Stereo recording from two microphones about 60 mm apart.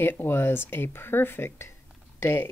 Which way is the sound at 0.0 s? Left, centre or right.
Left.